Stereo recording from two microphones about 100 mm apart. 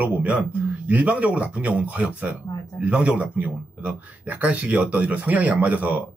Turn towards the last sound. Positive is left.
turn(degrees=-15)  # may be behind; listen again after turning